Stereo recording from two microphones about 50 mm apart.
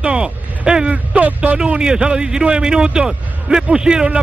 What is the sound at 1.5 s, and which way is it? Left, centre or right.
Speech, centre.